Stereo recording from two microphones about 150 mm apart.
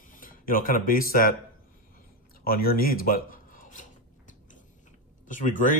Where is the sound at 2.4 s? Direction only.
85° left; by 4.3 s 60° left (ahead or behind).